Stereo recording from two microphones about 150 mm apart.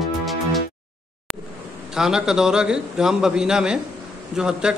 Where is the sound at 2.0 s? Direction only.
5° right (ahead or behind).